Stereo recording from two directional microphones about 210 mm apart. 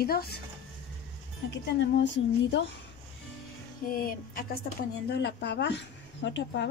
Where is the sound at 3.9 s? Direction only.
45° left (ahead or behind).